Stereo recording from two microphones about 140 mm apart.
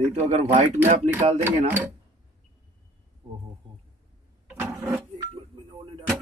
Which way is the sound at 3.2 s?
35° right (ahead or behind).